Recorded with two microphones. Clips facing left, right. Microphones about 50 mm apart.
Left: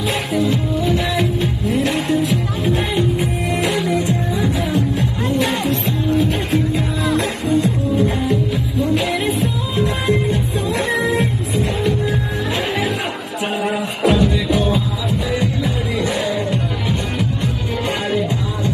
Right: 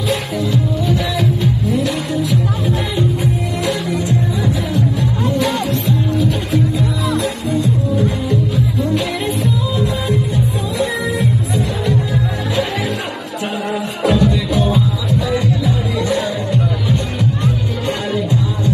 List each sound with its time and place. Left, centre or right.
0.1 s music: left
9.8 s music: left
14.0 s music: left